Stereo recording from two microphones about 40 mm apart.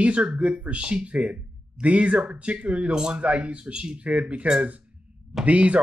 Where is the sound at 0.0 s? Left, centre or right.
Right.